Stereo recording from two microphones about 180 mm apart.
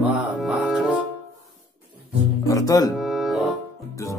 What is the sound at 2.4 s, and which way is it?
Music, 20° left (ahead or behind).